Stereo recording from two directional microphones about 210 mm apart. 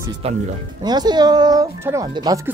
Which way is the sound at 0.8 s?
20° right (ahead or behind).